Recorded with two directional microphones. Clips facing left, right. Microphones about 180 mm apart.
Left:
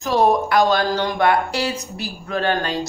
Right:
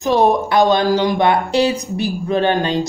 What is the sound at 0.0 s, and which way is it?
Speech, 25° right (ahead or behind).